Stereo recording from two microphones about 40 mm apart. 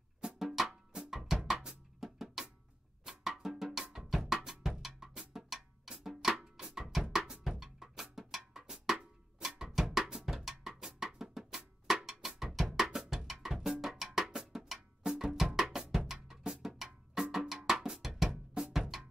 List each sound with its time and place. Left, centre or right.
0.4 s music: centre
0.9 s drum: centre
3.1 s music: centre
3.9 s drum: centre
5.3 s music: centre
9.6 s drum: centre
14.3 s drum: centre
14.7 s percussion: centre
15.7 s drum: centre
17.5 s cowbell: centre
17.8 s drum: centre
18.8 s drum: centre